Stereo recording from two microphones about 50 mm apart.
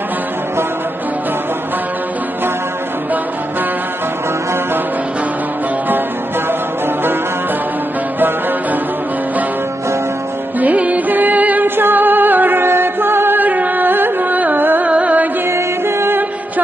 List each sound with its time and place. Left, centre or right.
10.6 s music: right
14.9 s music: right
15.4 s music: right